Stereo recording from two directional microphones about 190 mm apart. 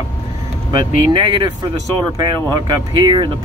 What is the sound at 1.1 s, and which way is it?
Speech, 25° right (ahead or behind).